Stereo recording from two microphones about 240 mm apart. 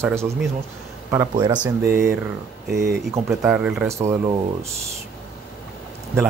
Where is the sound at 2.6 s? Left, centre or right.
Right.